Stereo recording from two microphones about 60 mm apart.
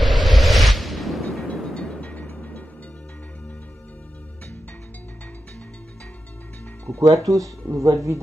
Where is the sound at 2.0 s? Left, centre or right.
Left.